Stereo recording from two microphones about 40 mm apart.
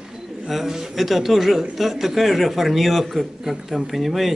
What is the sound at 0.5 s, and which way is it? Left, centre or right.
A man's voice, centre.